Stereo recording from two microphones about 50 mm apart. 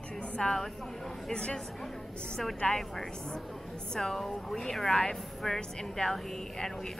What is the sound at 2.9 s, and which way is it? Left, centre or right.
A woman's voice, centre.